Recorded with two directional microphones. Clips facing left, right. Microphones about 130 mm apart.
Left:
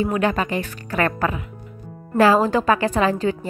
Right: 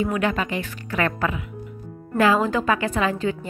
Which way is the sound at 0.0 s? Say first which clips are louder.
Left 2 dB; 35° left (ahead or behind).